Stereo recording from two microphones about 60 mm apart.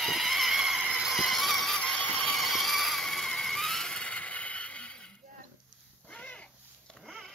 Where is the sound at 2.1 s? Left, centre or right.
Left.